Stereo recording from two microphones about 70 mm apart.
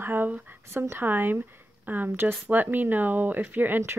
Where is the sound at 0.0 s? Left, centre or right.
Right.